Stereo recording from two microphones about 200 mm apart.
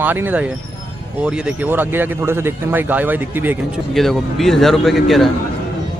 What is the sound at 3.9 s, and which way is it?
Speech, centre (ahead or behind).